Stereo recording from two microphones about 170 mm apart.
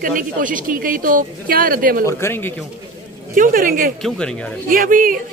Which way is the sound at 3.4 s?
55° right (ahead or behind).